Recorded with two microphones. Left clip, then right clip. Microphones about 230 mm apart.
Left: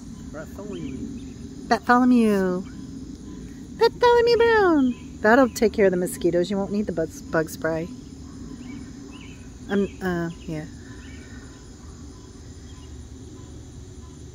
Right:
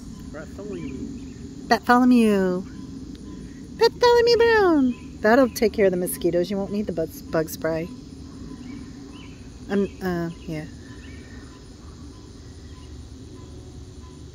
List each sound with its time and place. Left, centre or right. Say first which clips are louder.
0.3 s a sound: right 1 dB; left
1.7 s speech: right 1 dB; centre
3.7 s speech: even; centre
9.7 s speech: even; centre